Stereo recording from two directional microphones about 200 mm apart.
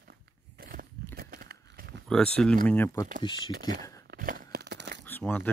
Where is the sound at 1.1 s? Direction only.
50° right (ahead or behind).